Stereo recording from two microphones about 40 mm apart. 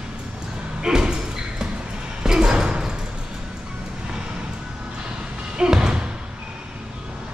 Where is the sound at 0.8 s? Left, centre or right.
Centre.